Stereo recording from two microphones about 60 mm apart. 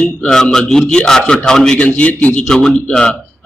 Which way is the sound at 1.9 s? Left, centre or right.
Left.